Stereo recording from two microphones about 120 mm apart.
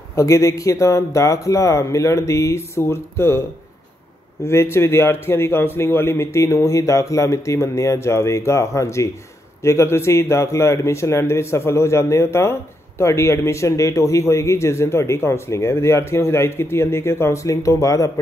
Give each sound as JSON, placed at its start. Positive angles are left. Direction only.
{"t": 0.1, "sound": "speech", "side_deg": 25}
{"t": 4.5, "sound": "speech", "side_deg": 20}